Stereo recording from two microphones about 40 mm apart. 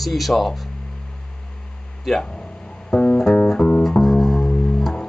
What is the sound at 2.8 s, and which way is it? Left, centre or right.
Music, left.